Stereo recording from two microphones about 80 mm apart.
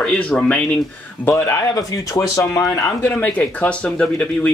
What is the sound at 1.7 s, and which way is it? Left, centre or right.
A man's voice, left.